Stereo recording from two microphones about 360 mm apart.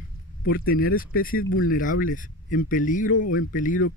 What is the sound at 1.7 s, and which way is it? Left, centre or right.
Speech, left.